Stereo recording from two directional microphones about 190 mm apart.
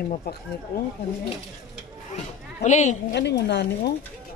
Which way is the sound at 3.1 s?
65° left (ahead or behind).